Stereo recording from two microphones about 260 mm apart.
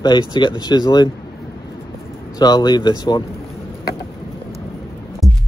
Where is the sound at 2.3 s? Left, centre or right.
Centre.